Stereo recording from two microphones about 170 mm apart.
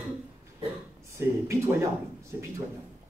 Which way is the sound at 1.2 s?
15° right (ahead or behind).